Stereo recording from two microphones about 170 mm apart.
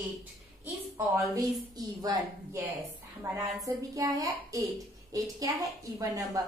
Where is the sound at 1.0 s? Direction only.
20° right (ahead or behind).